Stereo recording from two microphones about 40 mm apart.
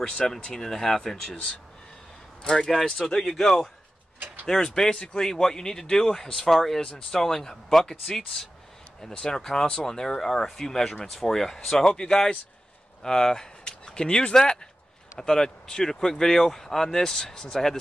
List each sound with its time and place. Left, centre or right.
0.0 s speech: left
2.4 s speech: centre
9.1 s speech: centre